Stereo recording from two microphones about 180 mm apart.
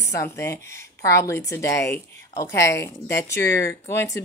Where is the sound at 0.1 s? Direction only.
15° left (ahead or behind).